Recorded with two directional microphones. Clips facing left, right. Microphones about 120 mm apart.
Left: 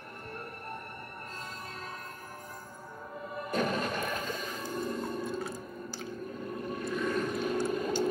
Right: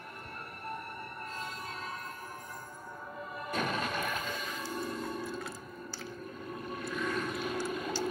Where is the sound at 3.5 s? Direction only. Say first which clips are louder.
Left 3 dB; 40° left (ahead or behind).